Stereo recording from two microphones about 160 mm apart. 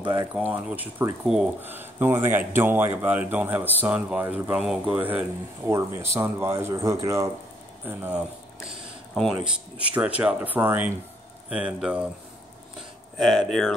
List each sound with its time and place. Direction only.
0.0 s speech: 30° right (ahead or behind)
0.3 s speech: 10° right (ahead or behind)
8.6 s speech: centre (ahead or behind)
13.2 s speech: centre (ahead or behind)